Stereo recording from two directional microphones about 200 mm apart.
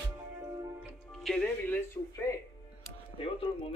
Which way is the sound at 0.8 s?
Centre (ahead or behind).